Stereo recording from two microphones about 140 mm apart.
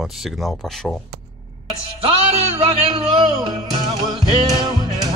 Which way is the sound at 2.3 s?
45° right (ahead or behind).